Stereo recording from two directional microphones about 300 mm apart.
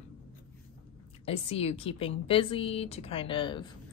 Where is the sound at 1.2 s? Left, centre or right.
Centre.